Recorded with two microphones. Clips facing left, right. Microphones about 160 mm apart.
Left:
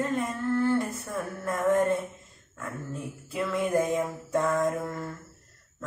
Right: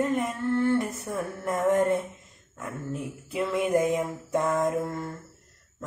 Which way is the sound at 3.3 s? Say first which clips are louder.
Right 2 dB; 20° right (ahead or behind).